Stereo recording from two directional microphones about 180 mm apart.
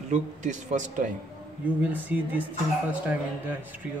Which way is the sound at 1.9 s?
10° right (ahead or behind).